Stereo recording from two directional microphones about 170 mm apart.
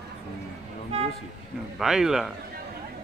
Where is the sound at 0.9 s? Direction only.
40° right (ahead or behind).